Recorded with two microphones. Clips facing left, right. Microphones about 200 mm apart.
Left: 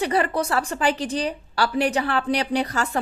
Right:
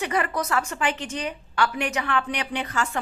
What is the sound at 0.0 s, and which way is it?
Speech, 35° left (ahead or behind).